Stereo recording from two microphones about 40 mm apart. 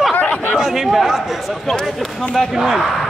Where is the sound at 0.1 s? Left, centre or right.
Left.